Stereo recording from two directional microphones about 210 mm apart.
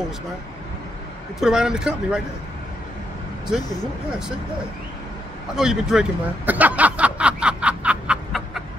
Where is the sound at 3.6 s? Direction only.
20° left (ahead or behind).